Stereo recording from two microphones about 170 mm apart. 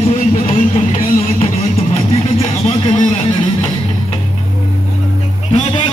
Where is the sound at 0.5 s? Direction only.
40° left (ahead or behind).